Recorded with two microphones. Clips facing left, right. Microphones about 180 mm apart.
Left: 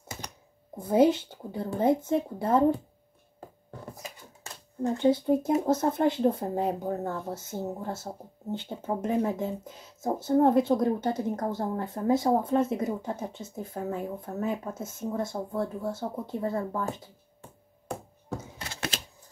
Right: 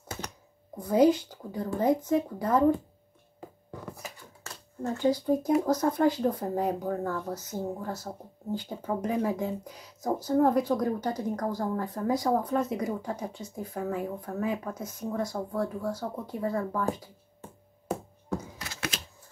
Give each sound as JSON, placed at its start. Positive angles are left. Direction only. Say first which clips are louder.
{"t": 0.7, "sound": "speech", "louder": "even", "side_deg": 25}
{"t": 4.9, "sound": "speech", "louder": "left 2 dB", "side_deg": 25}
{"t": 18.3, "sound": "thunk", "louder": "right 2 dB", "side_deg": 30}